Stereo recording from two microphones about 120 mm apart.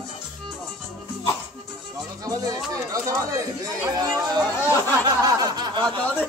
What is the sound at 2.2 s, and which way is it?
Speech, 30° right (ahead or behind).